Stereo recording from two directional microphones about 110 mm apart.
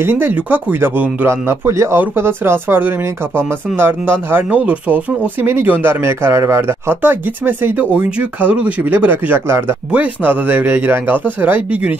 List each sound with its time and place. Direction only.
0.0 s speech: 20° right (ahead or behind)